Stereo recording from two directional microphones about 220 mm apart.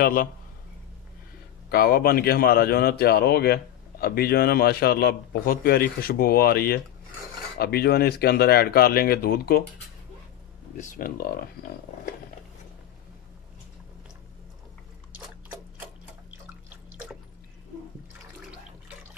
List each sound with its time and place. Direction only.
0.0 s speech: 40° left (ahead or behind)
1.7 s speech: 45° left (ahead or behind)
10.8 s speech: 35° left (ahead or behind)
16.9 s drip: 5° right (ahead or behind)